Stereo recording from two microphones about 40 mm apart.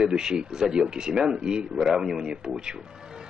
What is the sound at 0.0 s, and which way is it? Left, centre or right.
A man's voice, centre.